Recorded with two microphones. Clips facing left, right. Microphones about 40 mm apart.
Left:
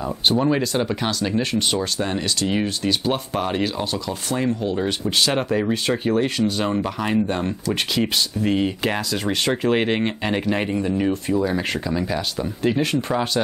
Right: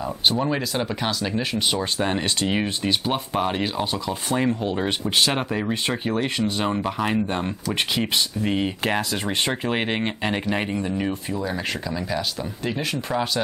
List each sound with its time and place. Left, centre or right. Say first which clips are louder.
0.0 s speech: left 3 dB; centre
2.0 s speech: even; right
3.1 s speech: left 1 dB; centre
3.8 s speech: even; right
5.3 s speech: left 4 dB; centre
6.6 s speech: left 1 dB; centre
9.1 s speech: left 2 dB; right
9.7 s speech: left 4 dB; centre